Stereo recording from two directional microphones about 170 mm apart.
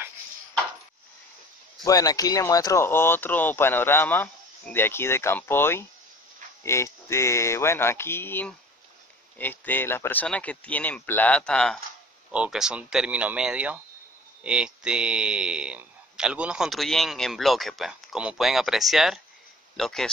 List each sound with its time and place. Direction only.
1.9 s speech: 20° left (ahead or behind); by 20.1 s 5° left (ahead or behind)